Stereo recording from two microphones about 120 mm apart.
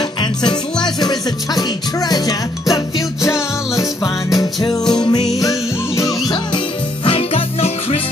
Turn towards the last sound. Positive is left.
turn(degrees=50)  # may be behind; listen again after turning